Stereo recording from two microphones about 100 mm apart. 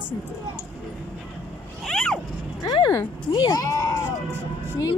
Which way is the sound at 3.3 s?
45° left (ahead or behind).